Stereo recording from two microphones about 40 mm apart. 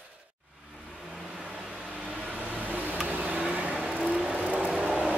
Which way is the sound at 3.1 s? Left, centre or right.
Right.